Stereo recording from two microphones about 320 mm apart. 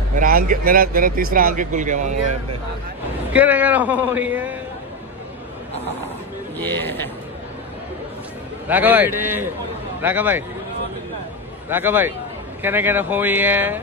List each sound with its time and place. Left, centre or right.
0.2 s speech: right
3.3 s a man's voice: centre
6.6 s speech: centre
8.6 s a man's voice: centre
11.7 s a man's voice: centre